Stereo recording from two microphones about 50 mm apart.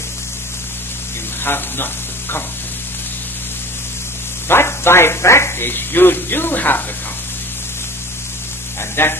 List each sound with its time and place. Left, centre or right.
1.4 s speech: left
4.5 s speech: left
5.7 s speech: left
9.0 s speech: left